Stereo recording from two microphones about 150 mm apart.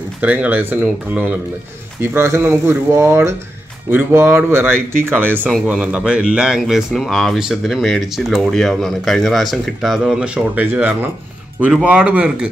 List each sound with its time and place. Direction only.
0.2 s speech: 10° right (ahead or behind)